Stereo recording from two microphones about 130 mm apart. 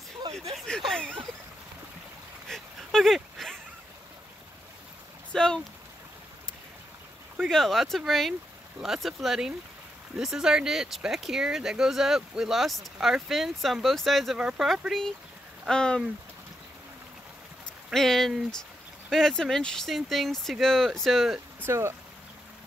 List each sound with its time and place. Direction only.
0.6 s a sound: centre (ahead or behind)
2.4 s a sound: centre (ahead or behind)
5.3 s speech: 5° left (ahead or behind)
7.4 s speech: centre (ahead or behind)
17.8 s speech: centre (ahead or behind)
21.6 s speech: 20° right (ahead or behind)